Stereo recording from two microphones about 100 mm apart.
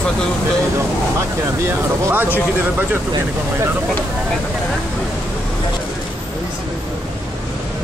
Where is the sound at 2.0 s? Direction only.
20° right (ahead or behind).